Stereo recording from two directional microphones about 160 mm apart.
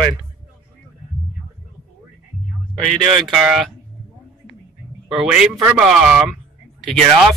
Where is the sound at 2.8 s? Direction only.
Centre (ahead or behind).